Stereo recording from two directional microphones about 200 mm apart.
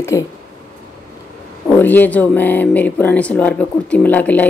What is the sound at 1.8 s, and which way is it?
Speech, 10° left (ahead or behind).